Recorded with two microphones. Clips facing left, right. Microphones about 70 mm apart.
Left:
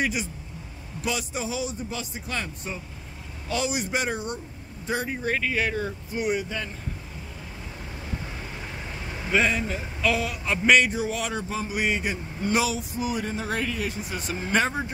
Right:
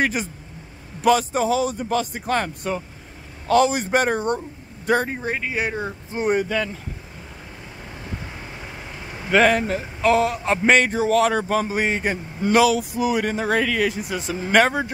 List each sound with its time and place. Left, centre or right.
0.0 s speech: right
3.4 s speech: right
5.3 s speech: right
6.5 s speech: right
9.3 s a man's voice: right
11.1 s speech: right
11.4 s speech: right
11.7 s a man's voice: right
12.4 s speech: right